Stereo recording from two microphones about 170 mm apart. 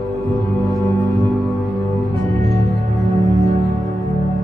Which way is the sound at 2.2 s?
20° left (ahead or behind).